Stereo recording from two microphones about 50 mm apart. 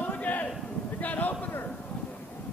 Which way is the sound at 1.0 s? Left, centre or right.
Left.